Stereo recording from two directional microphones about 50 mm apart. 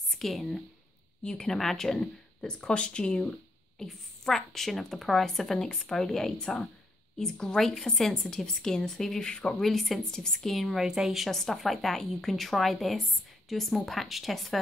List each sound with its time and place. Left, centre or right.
0.1 s speech: centre; by 3.3 s left
3.8 s a woman's voice: centre
9.3 s speech: centre
9.6 s a woman's voice: centre
11.2 s a woman's voice: centre